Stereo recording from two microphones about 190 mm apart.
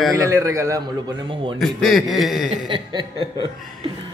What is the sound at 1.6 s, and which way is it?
Speech, centre (ahead or behind).